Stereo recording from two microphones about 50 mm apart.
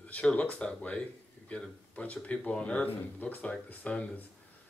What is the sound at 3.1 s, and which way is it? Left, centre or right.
Speech, left.